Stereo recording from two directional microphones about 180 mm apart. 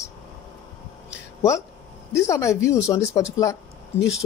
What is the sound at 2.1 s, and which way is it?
Speech, 15° left (ahead or behind).